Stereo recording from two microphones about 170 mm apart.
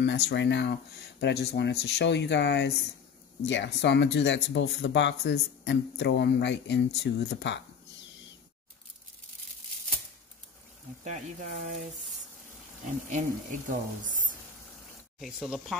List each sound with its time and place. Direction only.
0.0 s speech: 80° left
11.1 s speech: 45° right (ahead or behind)
13.1 s speech: 50° right (ahead or behind)
15.1 s speech: centre (ahead or behind)